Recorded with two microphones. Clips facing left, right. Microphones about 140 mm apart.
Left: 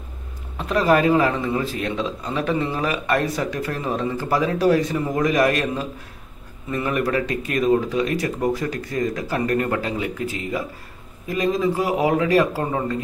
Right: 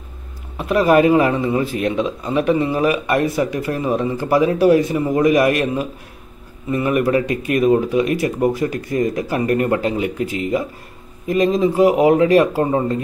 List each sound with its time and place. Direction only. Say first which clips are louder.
0.6 s a man's voice: right 4 dB; 15° right (ahead or behind)